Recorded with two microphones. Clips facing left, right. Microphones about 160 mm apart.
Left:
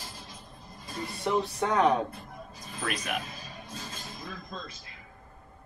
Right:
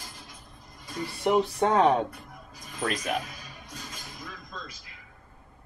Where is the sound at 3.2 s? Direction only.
30° left (ahead or behind).